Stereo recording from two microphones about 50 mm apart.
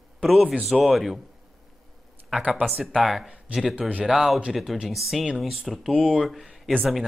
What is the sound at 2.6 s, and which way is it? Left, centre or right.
A man's voice, centre.